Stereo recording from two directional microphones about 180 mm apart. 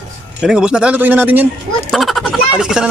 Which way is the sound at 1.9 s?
Centre (ahead or behind).